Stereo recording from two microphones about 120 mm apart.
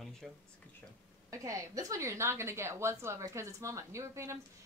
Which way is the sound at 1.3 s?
25° right (ahead or behind).